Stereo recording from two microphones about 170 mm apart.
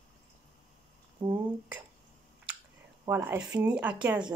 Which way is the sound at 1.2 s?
30° right (ahead or behind).